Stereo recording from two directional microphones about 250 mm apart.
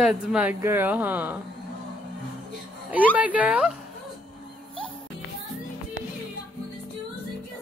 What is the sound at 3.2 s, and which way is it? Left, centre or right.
Speech, centre.